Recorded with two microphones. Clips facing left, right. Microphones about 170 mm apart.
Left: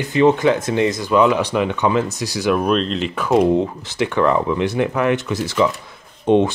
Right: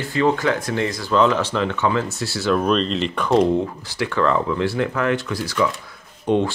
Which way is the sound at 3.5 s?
20° left (ahead or behind).